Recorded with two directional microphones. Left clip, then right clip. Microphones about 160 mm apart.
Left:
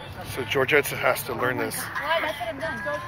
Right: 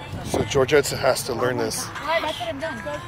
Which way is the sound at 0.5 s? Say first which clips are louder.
Right 2 dB; 35° right (ahead or behind).